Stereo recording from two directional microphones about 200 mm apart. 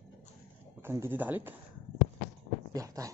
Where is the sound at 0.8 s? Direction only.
10° right (ahead or behind).